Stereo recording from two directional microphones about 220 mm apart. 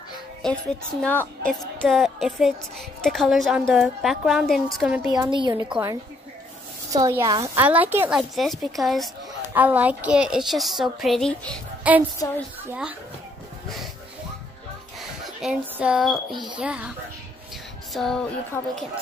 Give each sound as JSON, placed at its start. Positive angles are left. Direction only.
{"t": 0.4, "sound": "a woman's voice", "side_deg": 5}
{"t": 5.1, "sound": "a woman's voice", "side_deg": -20}
{"t": 12.2, "sound": "a child's voice", "side_deg": 15}
{"t": 12.6, "sound": "a woman's voice", "side_deg": -5}
{"t": 15.0, "sound": "a woman's voice", "side_deg": 0}
{"t": 17.9, "sound": "a woman's voice", "side_deg": 0}